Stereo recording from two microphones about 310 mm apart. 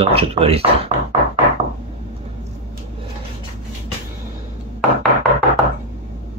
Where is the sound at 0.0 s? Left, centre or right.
Centre.